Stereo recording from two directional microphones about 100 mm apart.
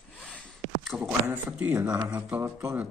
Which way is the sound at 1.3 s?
15° right (ahead or behind).